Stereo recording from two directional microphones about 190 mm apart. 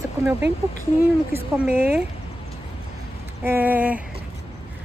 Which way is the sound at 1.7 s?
55° right (ahead or behind).